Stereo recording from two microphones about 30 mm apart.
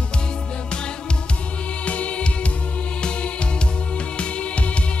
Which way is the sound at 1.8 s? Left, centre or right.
Left.